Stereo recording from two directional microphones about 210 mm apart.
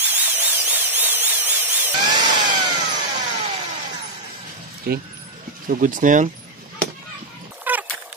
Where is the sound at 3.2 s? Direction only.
25° right (ahead or behind).